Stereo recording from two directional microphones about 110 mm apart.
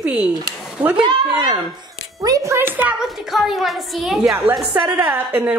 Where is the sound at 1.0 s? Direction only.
40° right (ahead or behind); by 3.0 s 15° right (ahead or behind).